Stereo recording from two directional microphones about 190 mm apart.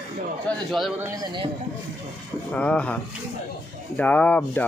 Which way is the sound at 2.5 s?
5° left (ahead or behind).